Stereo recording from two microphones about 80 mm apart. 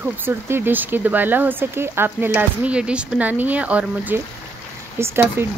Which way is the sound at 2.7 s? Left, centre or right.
Centre.